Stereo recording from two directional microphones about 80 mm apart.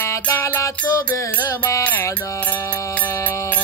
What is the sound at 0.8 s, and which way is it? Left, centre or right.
Music, left.